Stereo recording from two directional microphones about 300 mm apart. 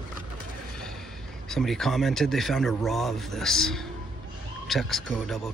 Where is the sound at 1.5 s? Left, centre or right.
Centre.